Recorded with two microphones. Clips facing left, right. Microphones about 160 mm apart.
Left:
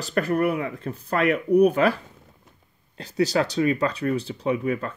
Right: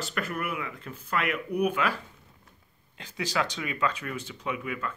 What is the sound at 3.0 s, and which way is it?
Speech, 40° left (ahead or behind).